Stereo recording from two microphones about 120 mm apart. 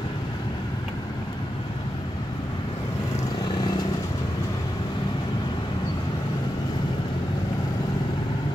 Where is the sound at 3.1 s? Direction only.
30° left (ahead or behind).